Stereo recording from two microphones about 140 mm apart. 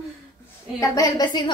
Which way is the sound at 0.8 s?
25° left (ahead or behind).